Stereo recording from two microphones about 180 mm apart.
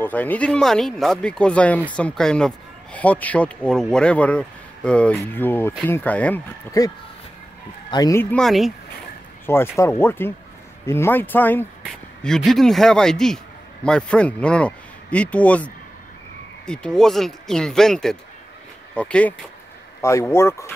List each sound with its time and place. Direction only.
0.0 s a man's voice: 10° left (ahead or behind)
6.8 s a man's voice: 20° left (ahead or behind); by 8.7 s centre (ahead or behind)
9.5 s a man's voice: 15° left (ahead or behind)